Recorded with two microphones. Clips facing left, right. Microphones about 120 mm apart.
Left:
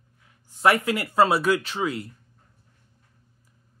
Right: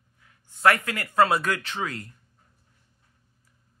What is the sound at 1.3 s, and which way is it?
Speech, 10° left (ahead or behind).